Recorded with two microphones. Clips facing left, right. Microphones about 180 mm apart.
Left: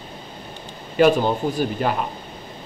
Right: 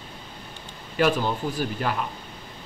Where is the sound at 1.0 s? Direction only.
25° left (ahead or behind).